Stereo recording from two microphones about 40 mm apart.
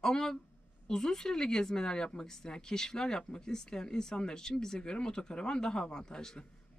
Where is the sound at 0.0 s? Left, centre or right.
Centre.